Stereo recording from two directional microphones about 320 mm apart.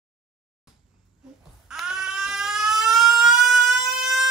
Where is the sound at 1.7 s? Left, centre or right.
Centre.